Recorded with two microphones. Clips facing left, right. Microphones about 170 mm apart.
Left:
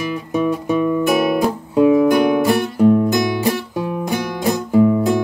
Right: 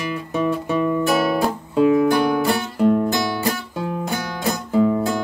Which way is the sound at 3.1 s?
15° left (ahead or behind).